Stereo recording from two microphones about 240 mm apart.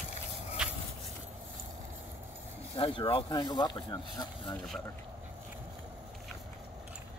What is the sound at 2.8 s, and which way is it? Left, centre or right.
Speech, left.